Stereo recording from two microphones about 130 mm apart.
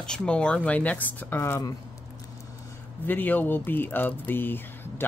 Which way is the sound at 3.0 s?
15° left (ahead or behind).